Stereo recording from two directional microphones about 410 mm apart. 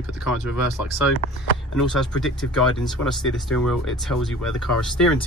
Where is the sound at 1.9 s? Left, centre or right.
Centre.